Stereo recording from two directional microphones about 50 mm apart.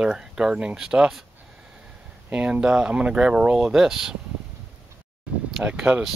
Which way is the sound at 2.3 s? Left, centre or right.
Right.